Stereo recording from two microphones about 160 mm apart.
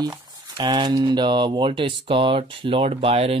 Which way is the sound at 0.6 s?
30° right (ahead or behind).